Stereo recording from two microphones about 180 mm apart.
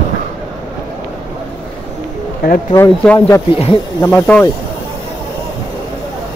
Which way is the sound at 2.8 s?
15° left (ahead or behind).